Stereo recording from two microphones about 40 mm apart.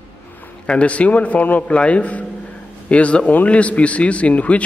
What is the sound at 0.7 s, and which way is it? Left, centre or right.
Speech, left.